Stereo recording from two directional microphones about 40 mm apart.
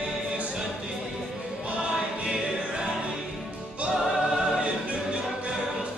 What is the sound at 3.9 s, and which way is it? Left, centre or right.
Music, centre.